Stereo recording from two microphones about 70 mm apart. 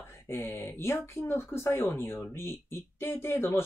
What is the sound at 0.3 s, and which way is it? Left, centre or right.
A woman's voice, left.